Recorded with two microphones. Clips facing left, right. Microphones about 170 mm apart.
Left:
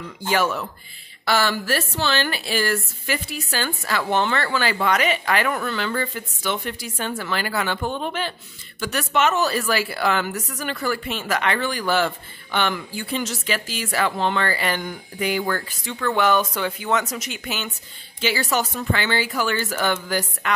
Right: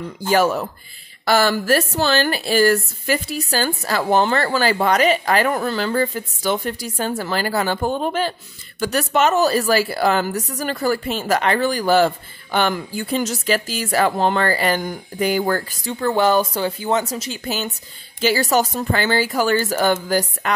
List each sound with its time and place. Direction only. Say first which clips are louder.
0.3 s a woman's voice: right 5 dB; 40° right (ahead or behind)